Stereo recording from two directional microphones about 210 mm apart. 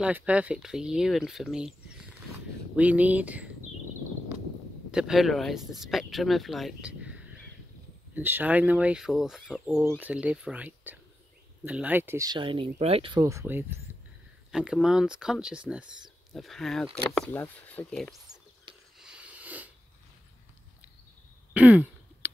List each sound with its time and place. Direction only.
0.0 s speech: 5° right (ahead or behind)
4.9 s speech: centre (ahead or behind)
18.9 s a sound: 5° right (ahead or behind)
21.5 s throat clearing: 5° right (ahead or behind)